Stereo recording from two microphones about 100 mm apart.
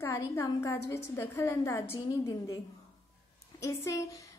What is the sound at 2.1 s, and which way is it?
A woman's voice, 40° left (ahead or behind).